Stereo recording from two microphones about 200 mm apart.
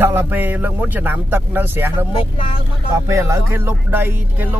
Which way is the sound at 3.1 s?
15° right (ahead or behind).